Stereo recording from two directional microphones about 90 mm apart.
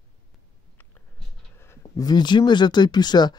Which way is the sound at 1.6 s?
40° left (ahead or behind).